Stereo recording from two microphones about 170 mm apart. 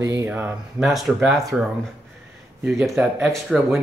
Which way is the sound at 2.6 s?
10° right (ahead or behind).